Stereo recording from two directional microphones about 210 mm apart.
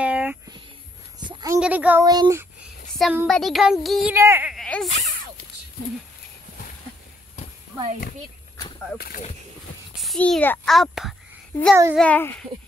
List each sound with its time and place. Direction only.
0.0 s a sound: 5° right (ahead or behind)
1.2 s a sound: 20° right (ahead or behind)
1.6 s child singing: 5° right (ahead or behind)
2.9 s a sound: centre (ahead or behind)
3.3 s speech: centre (ahead or behind)
8.9 s speech: 45° left (ahead or behind)
9.9 s a child's voice: 5° left (ahead or behind)
11.7 s child singing: 10° right (ahead or behind)
12.0 s a child's voice: 10° left (ahead or behind)